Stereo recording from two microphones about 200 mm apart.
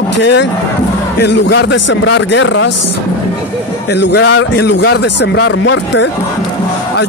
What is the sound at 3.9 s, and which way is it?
Speech, 60° left (ahead or behind).